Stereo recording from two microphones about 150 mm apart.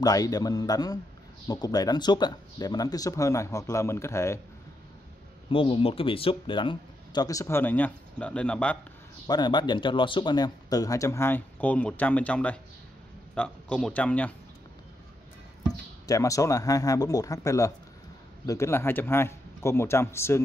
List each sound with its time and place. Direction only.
0.0 s speech: 25° left (ahead or behind)
5.5 s speech: 35° left (ahead or behind); by 8.7 s 5° left (ahead or behind)
9.3 s a man's voice: 30° left (ahead or behind); by 14.3 s 10° left (ahead or behind)
16.1 s a man's voice: 20° left (ahead or behind)